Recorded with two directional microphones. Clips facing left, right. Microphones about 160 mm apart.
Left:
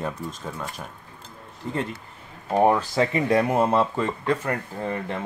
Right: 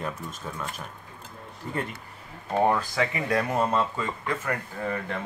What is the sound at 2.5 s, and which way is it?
Speech, 20° left (ahead or behind).